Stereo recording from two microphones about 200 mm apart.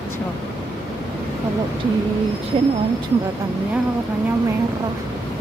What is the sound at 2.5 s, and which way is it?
Speech, 25° right (ahead or behind).